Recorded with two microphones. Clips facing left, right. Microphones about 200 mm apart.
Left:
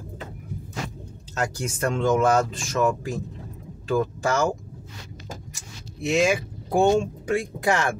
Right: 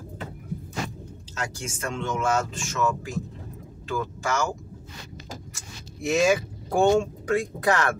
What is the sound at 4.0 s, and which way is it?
Speech, 30° left (ahead or behind).